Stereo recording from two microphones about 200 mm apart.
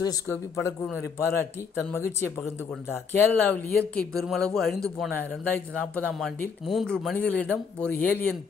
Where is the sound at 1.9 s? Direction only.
15° left (ahead or behind).